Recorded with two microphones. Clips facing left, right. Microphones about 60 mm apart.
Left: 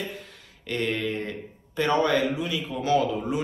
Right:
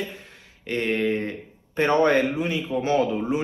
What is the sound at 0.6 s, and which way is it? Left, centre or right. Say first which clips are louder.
A man's voice: right 4 dB; right.